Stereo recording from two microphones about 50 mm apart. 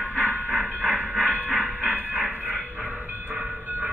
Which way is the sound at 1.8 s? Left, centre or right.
Right.